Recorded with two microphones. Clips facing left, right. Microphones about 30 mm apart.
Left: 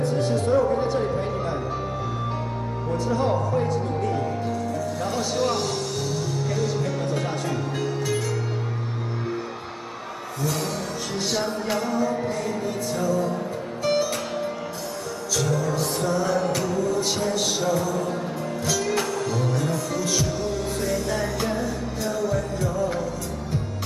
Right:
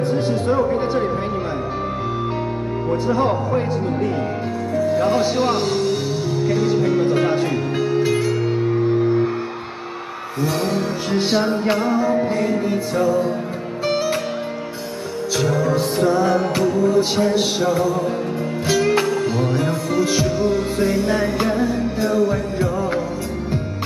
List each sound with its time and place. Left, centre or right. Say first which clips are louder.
0.0 s speech: right 4 dB; right
2.9 s music: right 4 dB; right
4.7 s speech: right 9 dB; right
8.6 s music: right 14 dB; right
10.4 s music: right 7 dB; right
15.3 s music: right 5 dB; right